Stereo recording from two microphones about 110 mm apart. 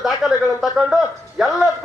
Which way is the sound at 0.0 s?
5° right (ahead or behind).